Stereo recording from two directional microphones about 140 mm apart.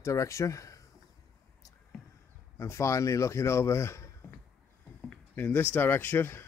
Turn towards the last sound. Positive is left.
turn(degrees=15)  # may be behind; listen again after turning